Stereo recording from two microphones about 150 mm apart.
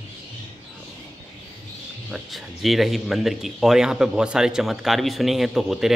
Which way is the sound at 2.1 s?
Centre (ahead or behind).